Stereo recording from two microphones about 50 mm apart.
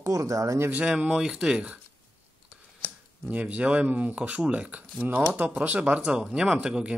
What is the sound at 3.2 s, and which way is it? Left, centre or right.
Speech, right.